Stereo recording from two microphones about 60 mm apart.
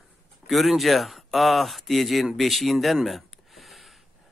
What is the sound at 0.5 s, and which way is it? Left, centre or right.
Speech, centre.